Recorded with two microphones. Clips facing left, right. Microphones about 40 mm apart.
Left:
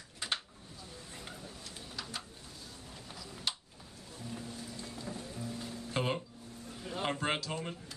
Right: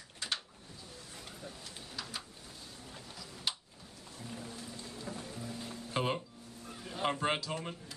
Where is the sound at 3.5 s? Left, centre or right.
Centre.